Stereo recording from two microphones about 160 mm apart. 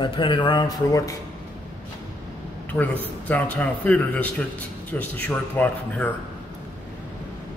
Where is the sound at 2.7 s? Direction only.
10° left (ahead or behind).